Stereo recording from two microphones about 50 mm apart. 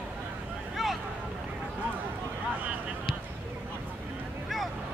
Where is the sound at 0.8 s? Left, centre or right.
Centre.